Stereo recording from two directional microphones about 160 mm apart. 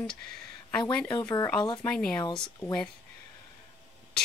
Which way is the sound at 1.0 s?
25° left (ahead or behind).